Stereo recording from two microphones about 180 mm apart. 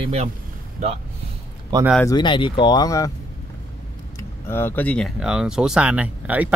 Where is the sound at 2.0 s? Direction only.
25° left (ahead or behind).